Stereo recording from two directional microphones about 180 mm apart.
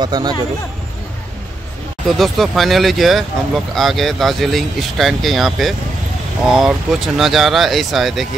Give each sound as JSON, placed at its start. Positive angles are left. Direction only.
{"t": 0.0, "sound": "speech", "side_deg": -25}
{"t": 2.1, "sound": "speech", "side_deg": 0}